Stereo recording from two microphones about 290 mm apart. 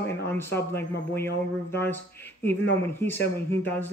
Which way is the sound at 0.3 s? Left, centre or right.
Centre.